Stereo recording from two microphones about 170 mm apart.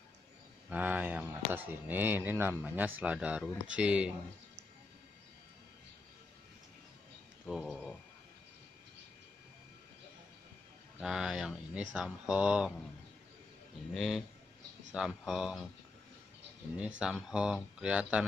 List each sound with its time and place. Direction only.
0.7 s speech: 10° right (ahead or behind)
7.4 s speech: centre (ahead or behind)
11.0 s speech: centre (ahead or behind)
13.9 s speech: centre (ahead or behind)
17.0 s speech: 5° right (ahead or behind)